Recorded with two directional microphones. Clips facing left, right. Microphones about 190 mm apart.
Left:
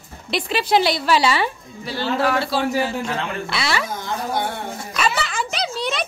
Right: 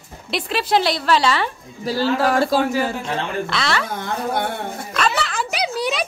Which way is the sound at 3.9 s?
60° right (ahead or behind).